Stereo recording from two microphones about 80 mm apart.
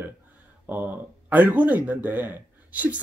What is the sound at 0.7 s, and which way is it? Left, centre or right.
Speech, right.